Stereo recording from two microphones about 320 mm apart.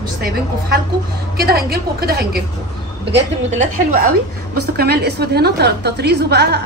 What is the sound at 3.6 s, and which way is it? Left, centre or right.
A woman's voice, right.